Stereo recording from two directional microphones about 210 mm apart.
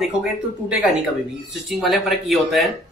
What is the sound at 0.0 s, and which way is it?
Speech, 5° right (ahead or behind).